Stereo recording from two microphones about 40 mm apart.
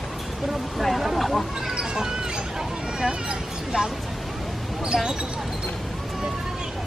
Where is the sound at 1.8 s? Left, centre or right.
Centre.